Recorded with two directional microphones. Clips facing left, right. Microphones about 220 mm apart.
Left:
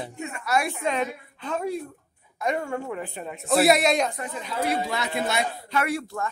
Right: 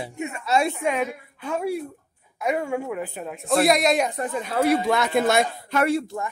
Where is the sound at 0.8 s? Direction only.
10° right (ahead or behind).